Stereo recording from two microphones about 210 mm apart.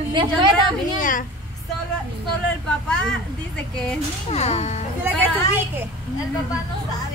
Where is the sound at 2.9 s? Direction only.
5° left (ahead or behind).